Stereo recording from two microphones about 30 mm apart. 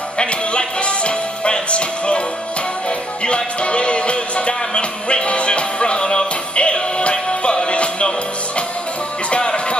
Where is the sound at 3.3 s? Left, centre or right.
Left.